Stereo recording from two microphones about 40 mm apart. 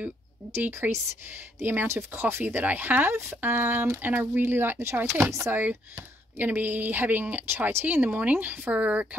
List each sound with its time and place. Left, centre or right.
0.6 s speech: right
1.6 s speech: right
1.9 s speech: right
2.4 s speech: right
5.6 s speech: right